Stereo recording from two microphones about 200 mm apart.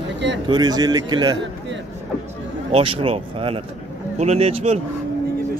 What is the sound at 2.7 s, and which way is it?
A man's voice, 30° right (ahead or behind).